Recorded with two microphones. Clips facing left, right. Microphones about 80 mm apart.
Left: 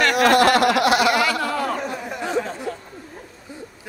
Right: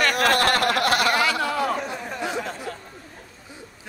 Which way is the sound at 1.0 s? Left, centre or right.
Centre.